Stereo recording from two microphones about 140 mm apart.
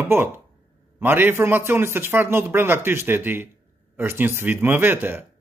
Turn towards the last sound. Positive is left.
turn(degrees=-15)  # may be behind; listen again after turning